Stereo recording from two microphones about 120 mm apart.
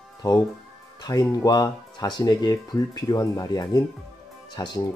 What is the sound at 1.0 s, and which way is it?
Speech, 30° left (ahead or behind).